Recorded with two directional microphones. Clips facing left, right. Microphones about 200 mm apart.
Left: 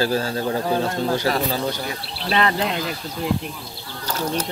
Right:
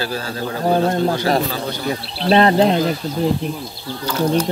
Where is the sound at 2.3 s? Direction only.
35° right (ahead or behind).